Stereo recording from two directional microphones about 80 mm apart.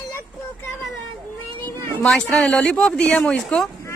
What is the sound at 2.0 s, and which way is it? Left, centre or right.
Speech, centre.